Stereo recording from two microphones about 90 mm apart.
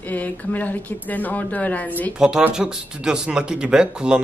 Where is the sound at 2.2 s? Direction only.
10° right (ahead or behind).